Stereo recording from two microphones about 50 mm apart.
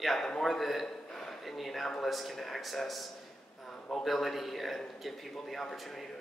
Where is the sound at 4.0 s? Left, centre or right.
Centre.